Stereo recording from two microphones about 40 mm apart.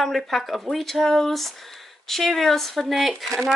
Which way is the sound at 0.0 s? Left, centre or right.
Centre.